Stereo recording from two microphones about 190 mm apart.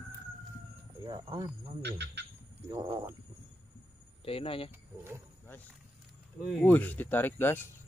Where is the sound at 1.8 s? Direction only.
65° right (ahead or behind).